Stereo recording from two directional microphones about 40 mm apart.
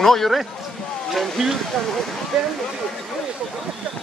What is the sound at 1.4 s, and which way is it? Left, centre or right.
Speech, centre.